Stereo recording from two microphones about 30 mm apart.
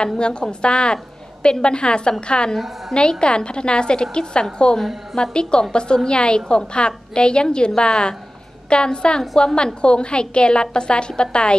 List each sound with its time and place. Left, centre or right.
0.0 s a woman's voice: left